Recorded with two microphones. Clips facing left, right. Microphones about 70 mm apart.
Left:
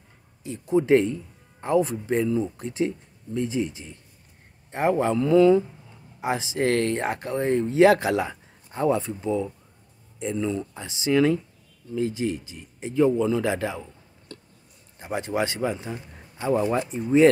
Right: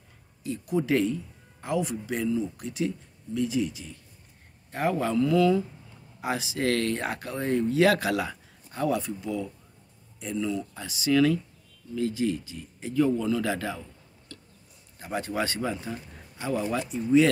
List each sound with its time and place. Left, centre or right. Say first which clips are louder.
0.4 s speech: left 5 dB; left
15.0 s a man's voice: left 3 dB; left